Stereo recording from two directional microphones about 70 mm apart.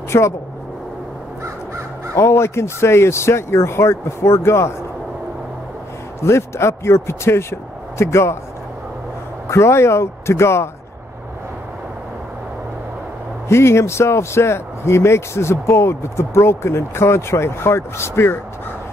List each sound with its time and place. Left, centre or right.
0.1 s speech: left
2.1 s speech: left
6.2 s speech: left
9.5 s speech: left
13.5 s speech: left